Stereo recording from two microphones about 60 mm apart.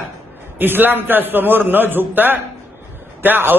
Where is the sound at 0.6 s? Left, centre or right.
Right.